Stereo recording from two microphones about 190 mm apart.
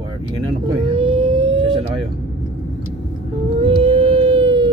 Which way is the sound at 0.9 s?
30° right (ahead or behind).